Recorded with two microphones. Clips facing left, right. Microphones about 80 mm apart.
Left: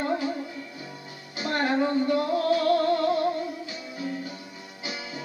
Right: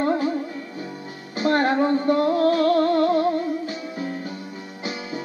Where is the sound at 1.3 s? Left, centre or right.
Right.